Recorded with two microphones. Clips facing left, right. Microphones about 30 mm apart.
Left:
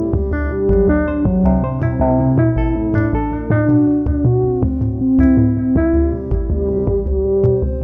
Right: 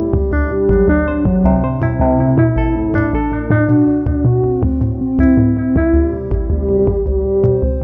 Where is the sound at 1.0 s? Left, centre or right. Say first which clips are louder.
Right 1 dB; right.